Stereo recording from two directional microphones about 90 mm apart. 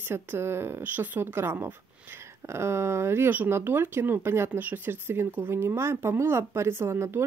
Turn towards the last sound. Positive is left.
turn(degrees=-30)  # may be behind; listen again after turning